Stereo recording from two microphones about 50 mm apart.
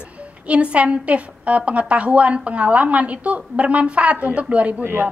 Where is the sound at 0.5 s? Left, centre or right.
Right.